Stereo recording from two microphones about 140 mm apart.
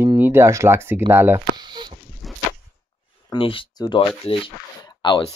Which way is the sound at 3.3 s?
40° left (ahead or behind).